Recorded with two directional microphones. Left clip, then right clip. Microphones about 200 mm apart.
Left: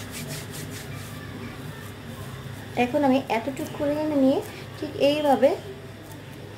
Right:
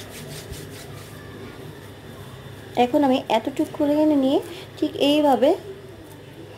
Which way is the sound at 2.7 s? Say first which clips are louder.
Right 3 dB; 35° right (ahead or behind).